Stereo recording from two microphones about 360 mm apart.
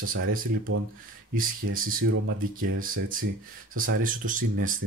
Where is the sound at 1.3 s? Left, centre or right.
Right.